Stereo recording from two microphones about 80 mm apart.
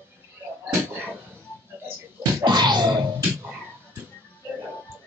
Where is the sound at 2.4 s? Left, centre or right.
Right.